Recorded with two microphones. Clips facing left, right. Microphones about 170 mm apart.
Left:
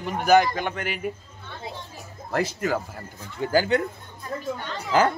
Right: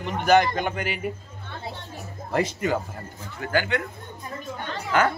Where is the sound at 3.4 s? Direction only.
35° left (ahead or behind).